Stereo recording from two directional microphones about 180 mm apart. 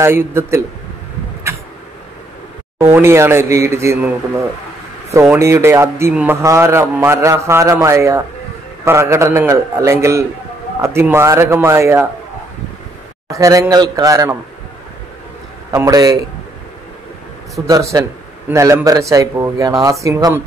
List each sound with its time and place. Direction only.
0.0 s a man's voice: 15° right (ahead or behind)
2.8 s a man's voice: 15° right (ahead or behind)
5.1 s a man's voice: 15° right (ahead or behind)
13.3 s a man's voice: 20° right (ahead or behind)
15.7 s a man's voice: 20° right (ahead or behind)
17.6 s a man's voice: 20° right (ahead or behind)